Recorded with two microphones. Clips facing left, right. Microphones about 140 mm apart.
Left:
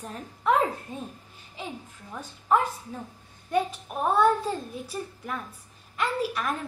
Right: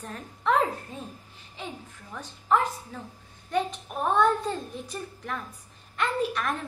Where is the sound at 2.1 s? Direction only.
15° left (ahead or behind).